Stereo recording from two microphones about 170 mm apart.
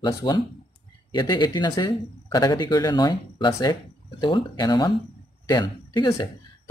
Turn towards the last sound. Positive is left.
turn(degrees=25)  # may be behind; listen again after turning